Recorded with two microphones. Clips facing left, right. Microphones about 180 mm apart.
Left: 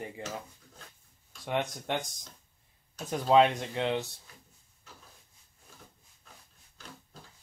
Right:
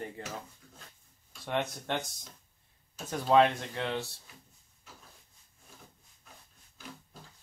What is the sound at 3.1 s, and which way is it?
Speech, 15° left (ahead or behind).